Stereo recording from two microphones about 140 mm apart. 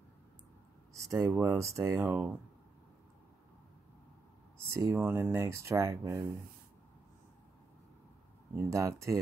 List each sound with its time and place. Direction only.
0.9 s speech: 20° right (ahead or behind)
4.6 s speech: 20° right (ahead or behind)
8.5 s speech: 20° right (ahead or behind)